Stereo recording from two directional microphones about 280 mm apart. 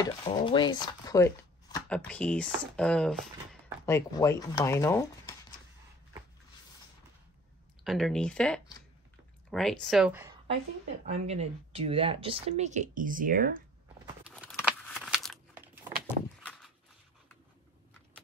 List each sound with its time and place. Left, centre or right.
0.0 s speech: centre
7.8 s speech: centre
11.1 s speech: right
14.0 s crumpling: centre